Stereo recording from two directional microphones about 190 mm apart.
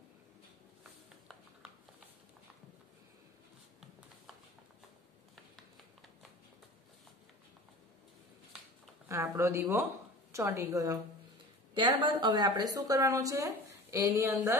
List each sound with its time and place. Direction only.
9.1 s a woman's voice: 15° right (ahead or behind)